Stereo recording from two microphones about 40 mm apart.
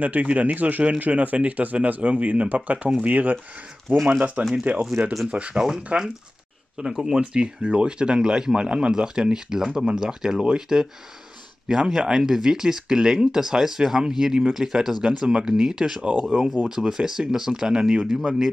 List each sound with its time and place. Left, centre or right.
0.0 s speech: right
3.9 s speech: centre
4.7 s speech: right
6.8 s speech: centre
16.0 s speech: right
16.6 s speech: centre